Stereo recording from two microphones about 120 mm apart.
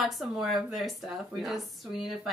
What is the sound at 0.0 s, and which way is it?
Speech, centre (ahead or behind).